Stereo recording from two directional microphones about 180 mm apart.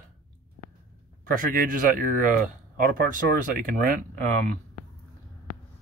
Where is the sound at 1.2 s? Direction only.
50° right (ahead or behind).